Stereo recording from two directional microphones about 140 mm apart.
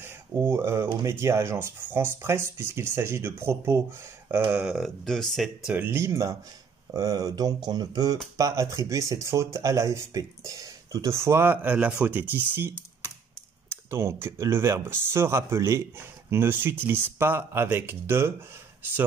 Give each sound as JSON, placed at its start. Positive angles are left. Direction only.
{"t": 0.0, "sound": "speech", "side_deg": -15}
{"t": 4.3, "sound": "speech", "side_deg": -10}
{"t": 5.7, "sound": "speech", "side_deg": -15}